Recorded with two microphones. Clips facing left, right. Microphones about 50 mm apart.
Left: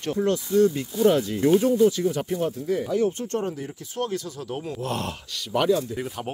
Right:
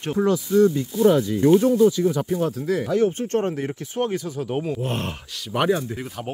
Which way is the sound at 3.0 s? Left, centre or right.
Right.